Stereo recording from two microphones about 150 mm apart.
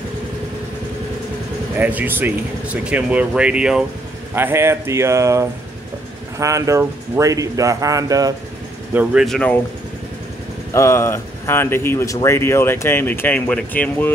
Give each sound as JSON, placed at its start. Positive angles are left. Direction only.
{"t": 1.8, "sound": "speech", "side_deg": -10}
{"t": 8.9, "sound": "speech", "side_deg": -5}
{"t": 10.7, "sound": "speech", "side_deg": 20}